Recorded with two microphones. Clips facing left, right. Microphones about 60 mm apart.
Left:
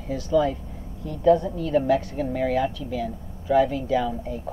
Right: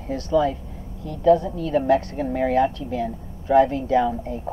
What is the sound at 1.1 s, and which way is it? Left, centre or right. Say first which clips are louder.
Speech: right 2 dB; left.